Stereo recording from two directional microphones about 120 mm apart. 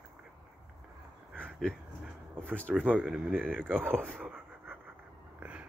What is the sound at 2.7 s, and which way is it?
Speech, 10° right (ahead or behind).